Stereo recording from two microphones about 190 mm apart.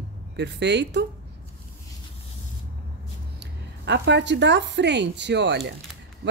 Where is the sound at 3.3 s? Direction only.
65° right (ahead or behind).